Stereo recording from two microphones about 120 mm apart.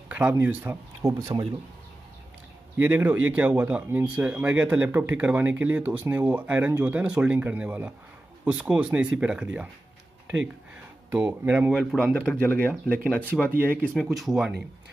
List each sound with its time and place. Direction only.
0.1 s speech: 10° right (ahead or behind)
1.0 s speech: 25° right (ahead or behind)
2.8 s speech: 15° right (ahead or behind)
11.1 s speech: 15° right (ahead or behind)
11.9 s speech: 5° left (ahead or behind)
13.0 s speech: 15° right (ahead or behind)
13.9 s speech: centre (ahead or behind)